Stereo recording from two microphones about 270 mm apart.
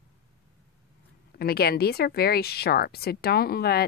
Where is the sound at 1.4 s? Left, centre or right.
Left.